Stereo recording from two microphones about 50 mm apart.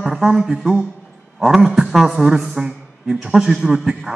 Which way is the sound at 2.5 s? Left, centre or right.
Centre.